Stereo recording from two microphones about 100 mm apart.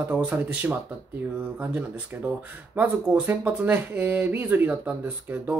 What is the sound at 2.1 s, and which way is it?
Speech, 20° right (ahead or behind).